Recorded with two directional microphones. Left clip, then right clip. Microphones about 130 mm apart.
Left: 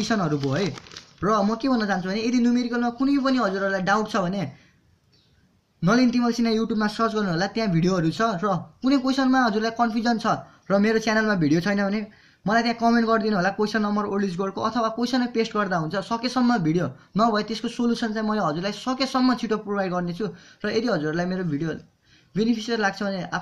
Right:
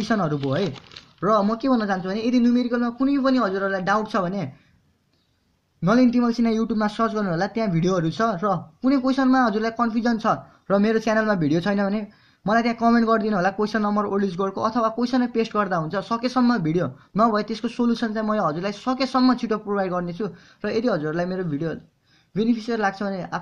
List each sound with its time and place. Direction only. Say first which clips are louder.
0.0 s a man's voice: right 1 dB; 45° right (ahead or behind)
5.8 s a man's voice: right 2 dB; 40° right (ahead or behind)